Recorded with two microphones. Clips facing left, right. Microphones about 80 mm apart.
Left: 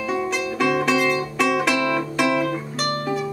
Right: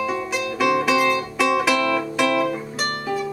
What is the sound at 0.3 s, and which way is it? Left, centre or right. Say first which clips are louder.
Music: right 2 dB; centre.